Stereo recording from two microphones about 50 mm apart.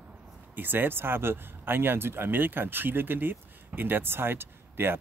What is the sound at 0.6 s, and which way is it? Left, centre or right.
Speech, right.